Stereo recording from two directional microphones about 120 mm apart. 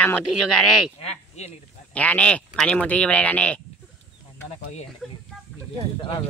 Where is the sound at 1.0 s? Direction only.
65° left (ahead or behind).